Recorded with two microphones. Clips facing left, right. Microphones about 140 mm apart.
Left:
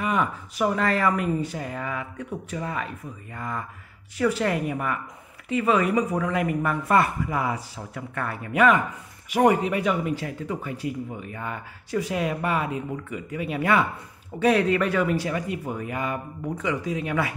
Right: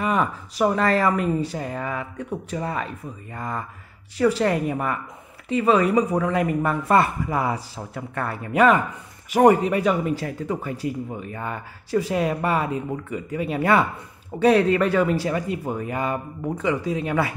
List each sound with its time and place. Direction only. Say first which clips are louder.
0.0 s speech: right 2 dB; 35° right (ahead or behind)